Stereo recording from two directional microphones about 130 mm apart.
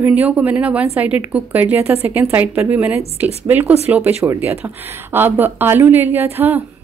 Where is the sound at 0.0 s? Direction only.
10° right (ahead or behind).